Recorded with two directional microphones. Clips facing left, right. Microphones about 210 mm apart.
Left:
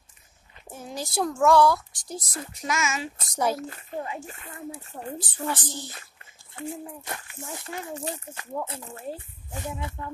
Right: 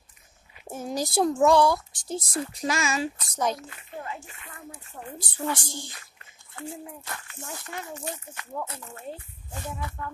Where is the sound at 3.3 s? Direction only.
10° left (ahead or behind).